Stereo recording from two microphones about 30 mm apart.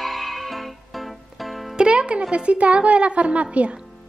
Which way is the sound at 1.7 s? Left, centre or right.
Right.